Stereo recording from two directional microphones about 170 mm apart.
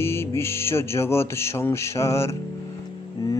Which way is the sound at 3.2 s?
20° left (ahead or behind).